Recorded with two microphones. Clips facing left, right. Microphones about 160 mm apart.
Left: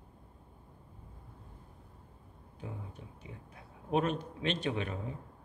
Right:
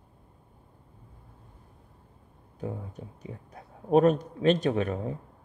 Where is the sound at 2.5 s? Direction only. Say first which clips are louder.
Right 9 dB; 40° right (ahead or behind).